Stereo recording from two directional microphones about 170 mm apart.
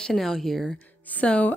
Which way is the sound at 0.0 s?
5° left (ahead or behind).